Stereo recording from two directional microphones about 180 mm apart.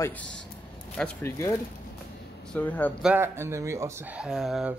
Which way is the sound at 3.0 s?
10° right (ahead or behind).